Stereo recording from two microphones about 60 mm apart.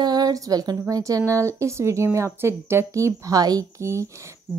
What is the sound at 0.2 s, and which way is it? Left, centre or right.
Speech, right.